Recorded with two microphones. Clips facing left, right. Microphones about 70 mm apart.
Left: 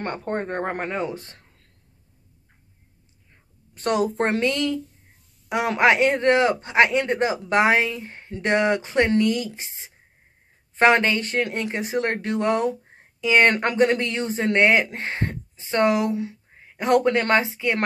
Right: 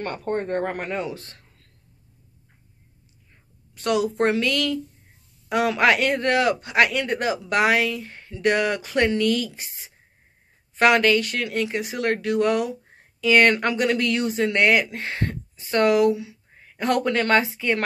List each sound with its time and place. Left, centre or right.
0.0 s speech: left
3.7 s a woman's voice: left